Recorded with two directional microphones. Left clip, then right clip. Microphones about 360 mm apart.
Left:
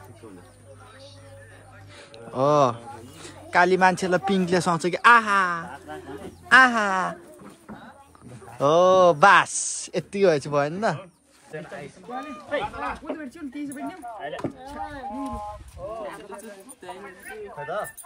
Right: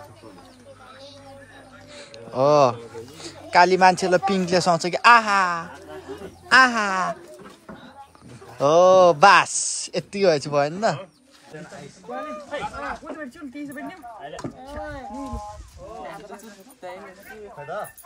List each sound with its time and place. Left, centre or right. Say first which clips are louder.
2.0 s speech: right 3 dB; centre
8.5 s speech: right 3 dB; centre
11.5 s speech: left 3 dB; left
12.4 s a sound: left 5 dB; centre
14.1 s chop: left 5 dB; left
17.3 s dog: left 2 dB; left